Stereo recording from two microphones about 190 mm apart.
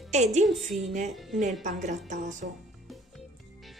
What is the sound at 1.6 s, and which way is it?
Speech, 40° right (ahead or behind).